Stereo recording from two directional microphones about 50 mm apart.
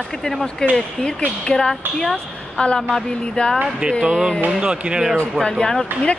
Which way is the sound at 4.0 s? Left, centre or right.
Centre.